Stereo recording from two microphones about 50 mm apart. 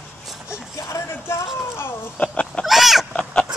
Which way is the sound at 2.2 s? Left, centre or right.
Left.